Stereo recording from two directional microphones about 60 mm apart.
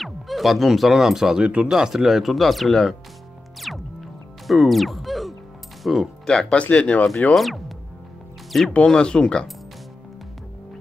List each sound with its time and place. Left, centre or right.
0.0 s speech: centre
3.7 s music: centre
5.9 s speech: centre
6.2 s speech: centre
7.3 s speech: centre
8.8 s speech: centre